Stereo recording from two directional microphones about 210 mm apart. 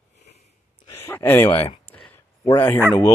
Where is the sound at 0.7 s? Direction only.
15° left (ahead or behind).